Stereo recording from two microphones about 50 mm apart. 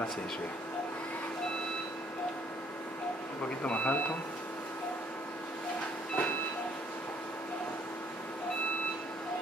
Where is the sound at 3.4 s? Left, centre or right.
Left.